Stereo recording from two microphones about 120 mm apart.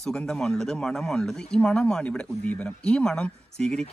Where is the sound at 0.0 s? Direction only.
5° left (ahead or behind).